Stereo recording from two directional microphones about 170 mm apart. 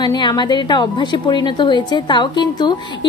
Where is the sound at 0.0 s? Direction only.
25° left (ahead or behind).